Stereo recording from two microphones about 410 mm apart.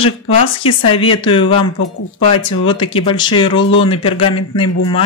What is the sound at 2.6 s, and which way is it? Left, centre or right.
Speech, centre.